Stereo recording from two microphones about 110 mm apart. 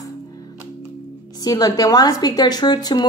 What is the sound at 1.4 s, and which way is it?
A woman's voice, 35° left (ahead or behind).